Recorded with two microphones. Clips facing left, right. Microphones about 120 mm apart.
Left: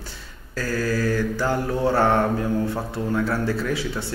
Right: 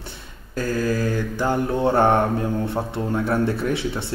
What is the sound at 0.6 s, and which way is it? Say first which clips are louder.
Mantra: right 2 dB; 20° right (ahead or behind).